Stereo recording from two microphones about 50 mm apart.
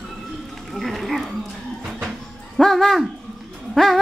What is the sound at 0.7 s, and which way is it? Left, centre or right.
Music, centre.